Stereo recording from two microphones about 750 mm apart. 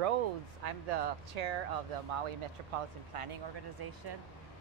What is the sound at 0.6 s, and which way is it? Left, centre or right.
Speech, right.